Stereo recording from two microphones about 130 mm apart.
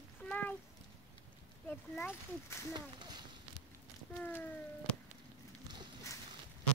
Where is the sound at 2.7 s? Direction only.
35° right (ahead or behind).